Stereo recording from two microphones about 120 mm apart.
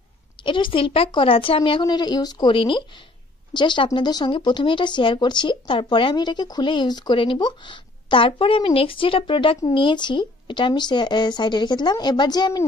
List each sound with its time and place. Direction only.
0.4 s speech: 45° left (ahead or behind)
2.5 s a woman's voice: 45° left (ahead or behind)